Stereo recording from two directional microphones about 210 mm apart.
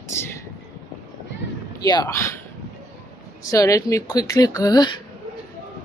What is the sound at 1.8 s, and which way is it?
Speech, 20° left (ahead or behind).